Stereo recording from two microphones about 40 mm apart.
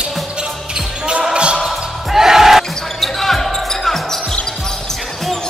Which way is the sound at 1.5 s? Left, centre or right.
Centre.